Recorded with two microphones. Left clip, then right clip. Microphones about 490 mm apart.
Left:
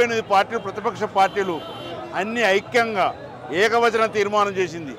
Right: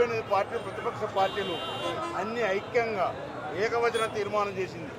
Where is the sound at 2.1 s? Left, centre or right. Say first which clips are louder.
Left 12 dB; left.